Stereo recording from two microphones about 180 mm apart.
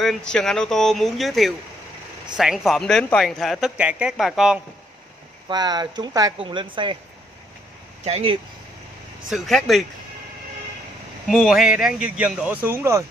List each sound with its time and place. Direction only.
0.0 s speech: 5° left (ahead or behind)
5.5 s speech: 20° right (ahead or behind)
8.0 s speech: 35° right (ahead or behind)
9.3 s speech: centre (ahead or behind)
11.2 s speech: centre (ahead or behind)